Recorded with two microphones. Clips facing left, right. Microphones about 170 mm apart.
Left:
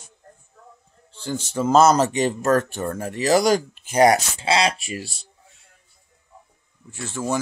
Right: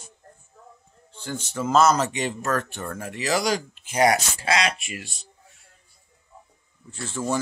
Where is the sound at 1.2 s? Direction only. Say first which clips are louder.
Left 5 dB; 30° left (ahead or behind).